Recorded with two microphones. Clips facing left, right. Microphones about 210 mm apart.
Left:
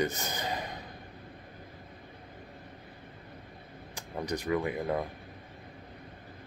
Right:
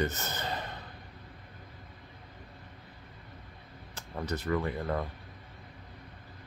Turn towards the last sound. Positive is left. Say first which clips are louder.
# left 2 dB
turn(degrees=15)  # may be behind; listen again after turning